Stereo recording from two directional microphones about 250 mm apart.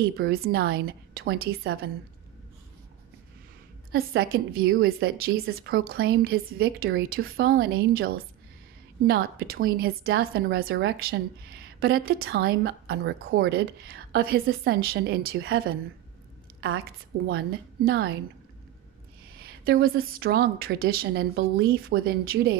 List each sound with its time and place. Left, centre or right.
0.0 s a woman's voice: right
3.9 s a woman's voice: right
17.3 s a woman's voice: right
19.4 s a woman's voice: right